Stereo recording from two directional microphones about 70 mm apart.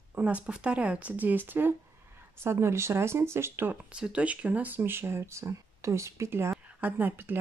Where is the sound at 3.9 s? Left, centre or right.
Centre; by 6.5 s right.